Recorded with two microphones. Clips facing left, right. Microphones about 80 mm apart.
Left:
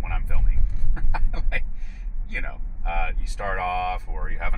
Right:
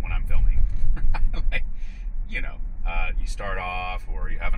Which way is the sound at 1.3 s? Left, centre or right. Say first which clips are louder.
Left 2 dB; left.